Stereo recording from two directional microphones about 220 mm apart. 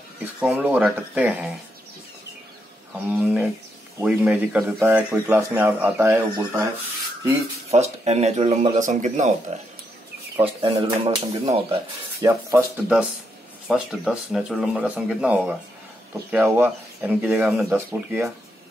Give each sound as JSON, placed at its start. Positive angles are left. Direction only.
{"t": 0.2, "sound": "speech", "side_deg": -5}
{"t": 2.9, "sound": "speech", "side_deg": -5}
{"t": 7.7, "sound": "speech", "side_deg": -30}
{"t": 12.3, "sound": "speech", "side_deg": -10}